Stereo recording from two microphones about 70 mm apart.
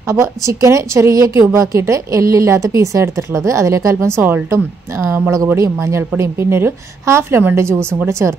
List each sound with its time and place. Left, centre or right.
0.1 s a woman's voice: right
4.2 s a woman's voice: right
5.6 s a woman's voice: right